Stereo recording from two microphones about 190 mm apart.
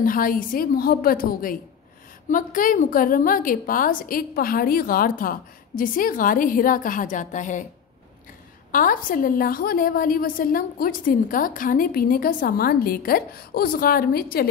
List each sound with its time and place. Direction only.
0.0 s a woman's voice: 45° left (ahead or behind)
8.7 s a woman's voice: 45° left (ahead or behind)